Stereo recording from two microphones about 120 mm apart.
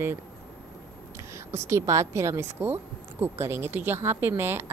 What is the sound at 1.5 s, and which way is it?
A woman's voice, 25° right (ahead or behind).